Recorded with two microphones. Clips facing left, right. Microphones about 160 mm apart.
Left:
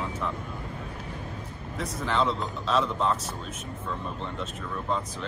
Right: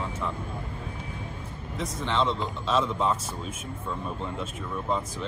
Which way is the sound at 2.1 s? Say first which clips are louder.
Even; centre (ahead or behind).